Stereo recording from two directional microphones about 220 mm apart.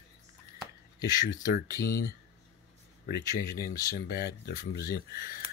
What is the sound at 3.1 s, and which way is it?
Speech, 45° left (ahead or behind).